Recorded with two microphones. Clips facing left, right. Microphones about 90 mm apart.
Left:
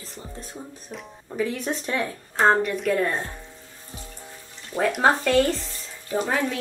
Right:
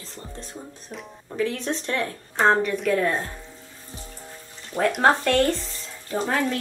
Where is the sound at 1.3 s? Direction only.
10° left (ahead or behind).